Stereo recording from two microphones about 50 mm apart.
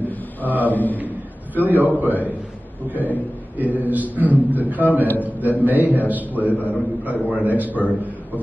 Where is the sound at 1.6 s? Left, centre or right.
Right.